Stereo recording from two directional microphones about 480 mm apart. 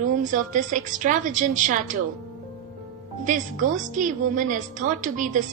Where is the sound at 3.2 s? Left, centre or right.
Centre.